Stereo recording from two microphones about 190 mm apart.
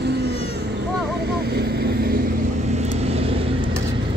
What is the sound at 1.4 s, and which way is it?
Vehicle, 55° right (ahead or behind).